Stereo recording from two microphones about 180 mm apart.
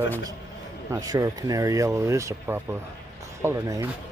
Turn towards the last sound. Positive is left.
turn(degrees=-15)  # may be behind; listen again after turning